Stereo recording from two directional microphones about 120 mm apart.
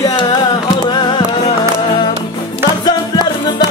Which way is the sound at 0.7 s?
35° left (ahead or behind).